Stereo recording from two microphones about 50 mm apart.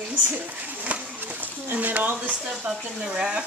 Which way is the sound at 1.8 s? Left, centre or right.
Right.